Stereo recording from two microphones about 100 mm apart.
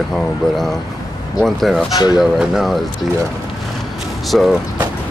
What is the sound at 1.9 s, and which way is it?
Speech, 45° left (ahead or behind).